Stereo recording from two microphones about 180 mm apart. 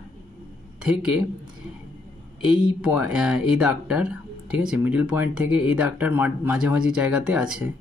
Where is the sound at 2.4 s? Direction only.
5° right (ahead or behind).